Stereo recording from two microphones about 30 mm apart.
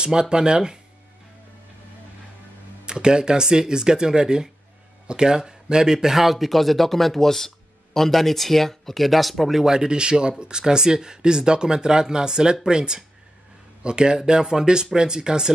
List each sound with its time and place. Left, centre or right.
0.0 s speech: right
2.8 s speech: right
6.1 s speech: centre
9.8 s speech: right